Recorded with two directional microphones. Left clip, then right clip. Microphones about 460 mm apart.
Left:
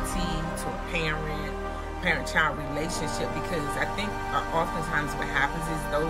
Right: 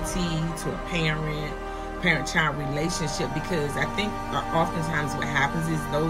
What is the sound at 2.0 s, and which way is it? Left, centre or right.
Speech, centre.